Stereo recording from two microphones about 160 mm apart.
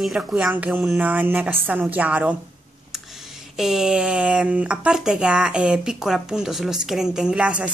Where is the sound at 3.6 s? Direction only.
5° right (ahead or behind).